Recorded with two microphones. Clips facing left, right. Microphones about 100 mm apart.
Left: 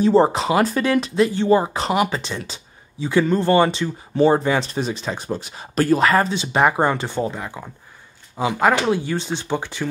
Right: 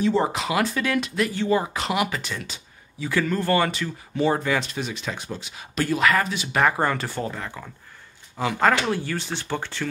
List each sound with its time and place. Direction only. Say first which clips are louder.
0.0 s speech: left 7 dB; 35° left (ahead or behind); by 9.8 s 15° left (ahead or behind)